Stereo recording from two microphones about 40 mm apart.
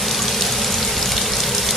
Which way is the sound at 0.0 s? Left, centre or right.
Centre.